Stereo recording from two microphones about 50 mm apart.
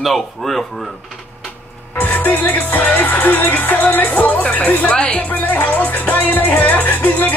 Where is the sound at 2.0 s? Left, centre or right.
Left.